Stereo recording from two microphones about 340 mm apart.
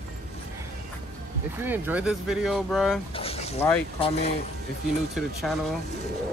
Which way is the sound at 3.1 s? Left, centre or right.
Centre.